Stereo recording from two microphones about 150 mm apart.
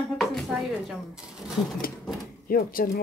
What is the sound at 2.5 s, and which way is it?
Speech, 75° left (ahead or behind).